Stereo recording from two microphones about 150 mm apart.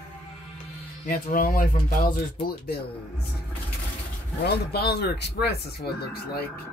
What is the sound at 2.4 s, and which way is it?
Speech, 90° left.